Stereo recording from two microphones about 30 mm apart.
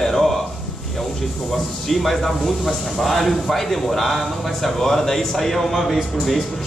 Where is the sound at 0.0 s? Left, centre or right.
Centre.